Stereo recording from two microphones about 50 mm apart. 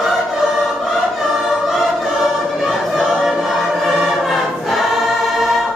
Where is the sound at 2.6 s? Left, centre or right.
Centre.